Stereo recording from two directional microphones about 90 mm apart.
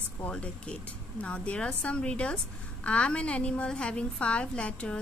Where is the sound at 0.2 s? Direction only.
10° left (ahead or behind).